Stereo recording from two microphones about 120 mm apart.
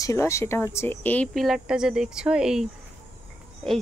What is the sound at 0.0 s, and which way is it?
Speech, 25° left (ahead or behind).